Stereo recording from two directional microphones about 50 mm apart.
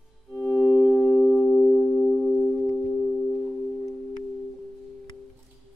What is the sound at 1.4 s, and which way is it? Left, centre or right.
Music, left.